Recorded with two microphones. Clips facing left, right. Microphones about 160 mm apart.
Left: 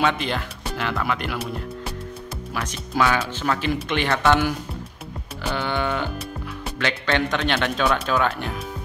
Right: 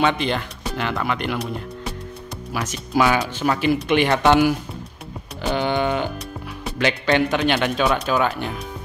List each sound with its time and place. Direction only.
0.0 s speech: centre (ahead or behind)
2.5 s speech: 5° right (ahead or behind)
5.5 s a sound: 20° right (ahead or behind)
6.8 s speech: 15° right (ahead or behind)